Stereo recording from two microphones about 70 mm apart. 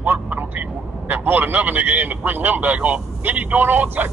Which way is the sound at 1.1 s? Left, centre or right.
Right.